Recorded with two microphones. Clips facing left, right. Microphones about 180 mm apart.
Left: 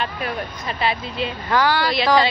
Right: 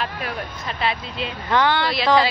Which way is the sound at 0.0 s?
Centre (ahead or behind).